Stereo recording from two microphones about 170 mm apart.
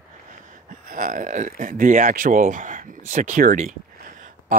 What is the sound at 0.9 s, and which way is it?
Speech, 55° right (ahead or behind).